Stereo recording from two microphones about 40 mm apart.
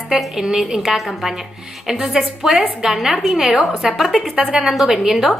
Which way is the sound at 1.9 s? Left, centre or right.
Centre.